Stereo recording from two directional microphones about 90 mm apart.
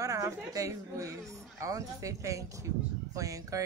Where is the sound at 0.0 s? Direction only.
40° right (ahead or behind).